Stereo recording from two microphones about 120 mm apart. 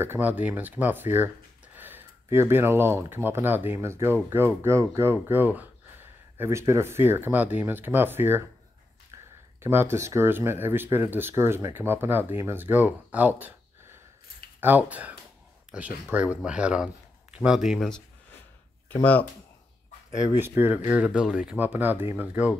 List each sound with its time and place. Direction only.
0.0 s speech: 15° right (ahead or behind)
9.6 s speech: 20° right (ahead or behind)
17.6 s speech: 5° left (ahead or behind)
20.3 s speech: 15° right (ahead or behind)